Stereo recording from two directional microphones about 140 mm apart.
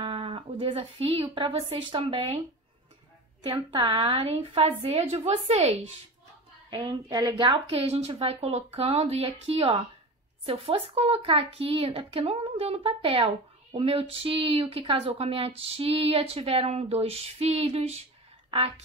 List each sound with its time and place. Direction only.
0.0 s speech: 40° right (ahead or behind)
3.4 s a woman's voice: 35° right (ahead or behind)
6.7 s speech: 30° right (ahead or behind); by 18.0 s 50° right (ahead or behind)